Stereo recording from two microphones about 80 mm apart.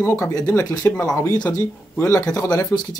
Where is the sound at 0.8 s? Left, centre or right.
Left.